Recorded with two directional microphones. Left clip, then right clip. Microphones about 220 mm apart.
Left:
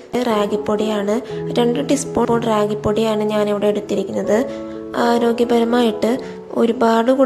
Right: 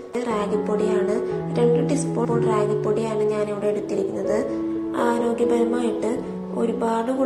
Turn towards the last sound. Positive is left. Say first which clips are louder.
# left 8 dB
turn(degrees=45)  # may be behind; listen again after turning